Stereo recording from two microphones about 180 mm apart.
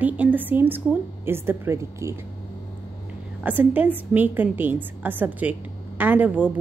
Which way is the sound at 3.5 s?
10° right (ahead or behind).